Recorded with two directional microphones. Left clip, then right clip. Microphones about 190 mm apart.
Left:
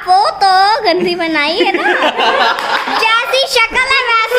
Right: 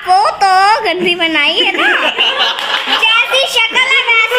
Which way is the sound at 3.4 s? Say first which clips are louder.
Right 1 dB; 20° left (ahead or behind).